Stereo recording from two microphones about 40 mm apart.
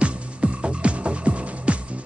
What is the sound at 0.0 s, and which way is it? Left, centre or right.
Music, right.